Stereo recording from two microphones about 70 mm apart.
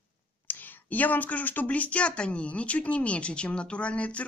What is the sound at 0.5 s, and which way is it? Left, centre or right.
Speech, left.